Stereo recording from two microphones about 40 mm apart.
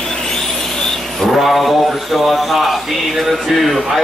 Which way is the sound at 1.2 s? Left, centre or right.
Centre.